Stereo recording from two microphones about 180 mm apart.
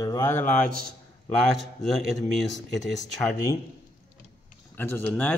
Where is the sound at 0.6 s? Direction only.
55° right (ahead or behind).